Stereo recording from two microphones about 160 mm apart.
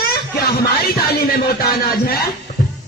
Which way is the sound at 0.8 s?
80° left.